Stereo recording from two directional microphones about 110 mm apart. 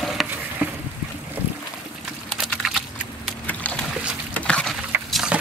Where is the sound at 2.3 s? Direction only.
Centre (ahead or behind).